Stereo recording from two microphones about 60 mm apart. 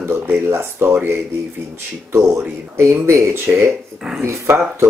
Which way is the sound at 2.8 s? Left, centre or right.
Right.